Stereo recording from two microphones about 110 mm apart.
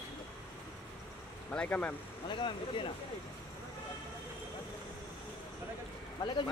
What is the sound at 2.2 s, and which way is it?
Speech, 50° left (ahead or behind).